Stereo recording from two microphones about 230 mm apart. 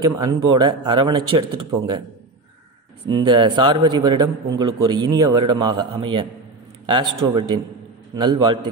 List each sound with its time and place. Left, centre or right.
0.0 s a man's voice: centre
3.1 s a man's voice: centre